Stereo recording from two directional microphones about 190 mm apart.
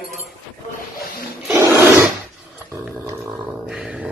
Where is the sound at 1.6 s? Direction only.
15° right (ahead or behind).